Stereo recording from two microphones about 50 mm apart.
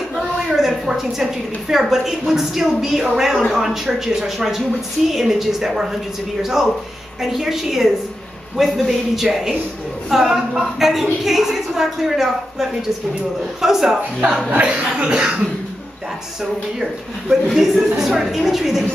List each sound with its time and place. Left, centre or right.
0.1 s a woman's voice: centre
7.2 s a woman's voice: centre
14.5 s a woman's voice: right
16.8 s a woman's voice: centre